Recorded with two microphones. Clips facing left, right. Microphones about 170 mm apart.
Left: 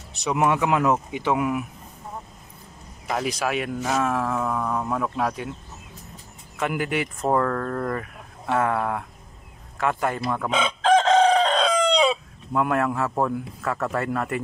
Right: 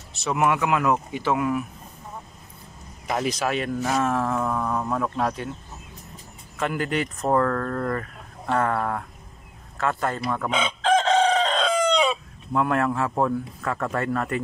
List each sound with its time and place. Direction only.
0.1 s speech: 15° left (ahead or behind)
3.1 s speech: 5° left (ahead or behind)
6.6 s speech: 10° left (ahead or behind)
10.8 s chicken: 35° left (ahead or behind)
12.5 s speech: 5° left (ahead or behind)